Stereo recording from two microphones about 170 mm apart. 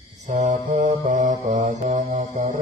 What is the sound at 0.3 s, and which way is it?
Mantra, 50° right (ahead or behind).